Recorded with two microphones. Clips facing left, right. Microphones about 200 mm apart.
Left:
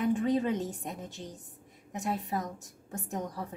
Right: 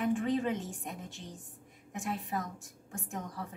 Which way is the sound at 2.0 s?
40° left (ahead or behind).